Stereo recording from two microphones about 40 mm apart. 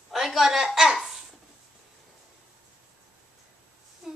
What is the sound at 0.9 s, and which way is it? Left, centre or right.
Babbling, centre.